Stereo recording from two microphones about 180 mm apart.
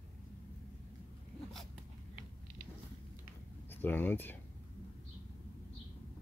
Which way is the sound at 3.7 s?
10° left (ahead or behind).